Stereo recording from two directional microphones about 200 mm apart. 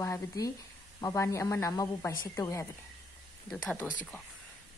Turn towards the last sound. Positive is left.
turn(degrees=5)  # may be behind; listen again after turning